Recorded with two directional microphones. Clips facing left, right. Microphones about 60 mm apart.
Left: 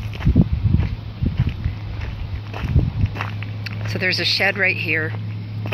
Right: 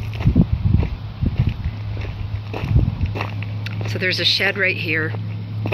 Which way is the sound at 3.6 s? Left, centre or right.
Left.